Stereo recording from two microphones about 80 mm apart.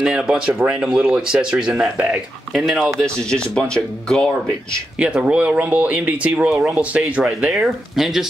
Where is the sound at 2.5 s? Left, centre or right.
Centre.